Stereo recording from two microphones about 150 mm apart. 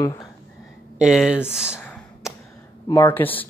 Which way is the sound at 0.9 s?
5° right (ahead or behind).